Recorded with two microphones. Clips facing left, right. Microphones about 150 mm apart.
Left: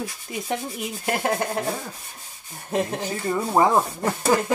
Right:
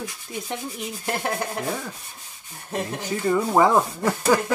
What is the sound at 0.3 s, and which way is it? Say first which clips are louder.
Speech: left 3 dB; 15° left (ahead or behind).